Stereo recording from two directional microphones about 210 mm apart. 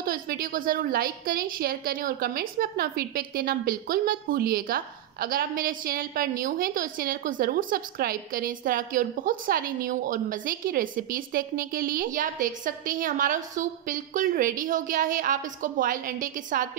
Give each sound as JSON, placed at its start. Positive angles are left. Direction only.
{"t": 0.0, "sound": "a woman's voice", "side_deg": -45}